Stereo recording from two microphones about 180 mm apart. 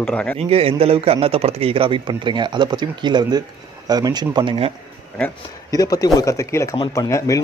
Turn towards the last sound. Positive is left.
turn(degrees=15)  # may be behind; listen again after turning